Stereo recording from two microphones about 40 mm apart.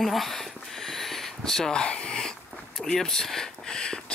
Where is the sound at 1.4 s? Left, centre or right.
Centre.